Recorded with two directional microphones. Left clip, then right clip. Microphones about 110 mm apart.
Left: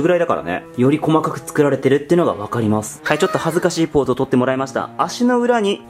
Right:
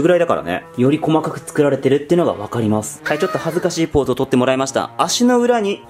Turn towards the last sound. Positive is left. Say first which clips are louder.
# even
turn(degrees=0)  # may be behind; listen again after turning